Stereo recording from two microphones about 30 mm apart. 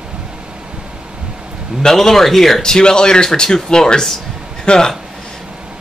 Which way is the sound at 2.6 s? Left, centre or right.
Left.